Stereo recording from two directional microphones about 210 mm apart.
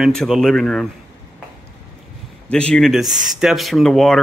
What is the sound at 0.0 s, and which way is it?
Speech, centre (ahead or behind).